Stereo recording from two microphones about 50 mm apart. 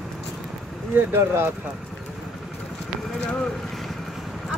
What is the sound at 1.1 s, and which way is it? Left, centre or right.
Speech, right.